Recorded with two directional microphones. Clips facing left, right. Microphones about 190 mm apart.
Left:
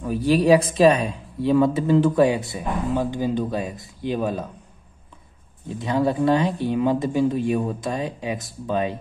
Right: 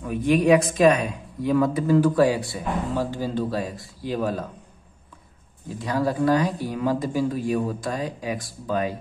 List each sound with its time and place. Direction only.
0.0 s a woman's voice: 35° left (ahead or behind)
5.7 s speech: 25° left (ahead or behind)